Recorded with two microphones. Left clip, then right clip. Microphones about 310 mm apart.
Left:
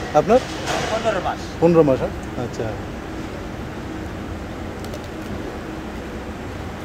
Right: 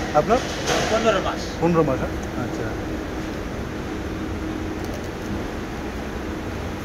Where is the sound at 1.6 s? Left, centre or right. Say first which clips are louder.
Left 6 dB; left.